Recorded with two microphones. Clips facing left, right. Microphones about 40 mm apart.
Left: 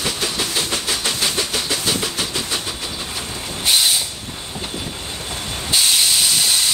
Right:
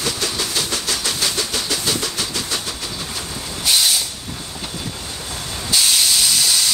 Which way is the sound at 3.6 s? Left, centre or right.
Centre.